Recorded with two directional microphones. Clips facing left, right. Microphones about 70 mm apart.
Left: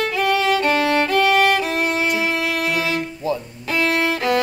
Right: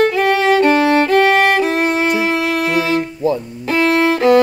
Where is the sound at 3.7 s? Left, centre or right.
Right.